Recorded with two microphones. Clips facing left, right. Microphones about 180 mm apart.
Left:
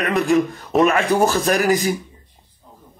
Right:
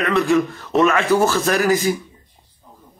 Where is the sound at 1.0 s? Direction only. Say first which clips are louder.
Right 1 dB; 15° left (ahead or behind).